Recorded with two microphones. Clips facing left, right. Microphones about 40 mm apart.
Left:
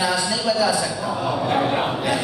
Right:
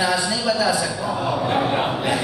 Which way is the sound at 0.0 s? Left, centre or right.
Right.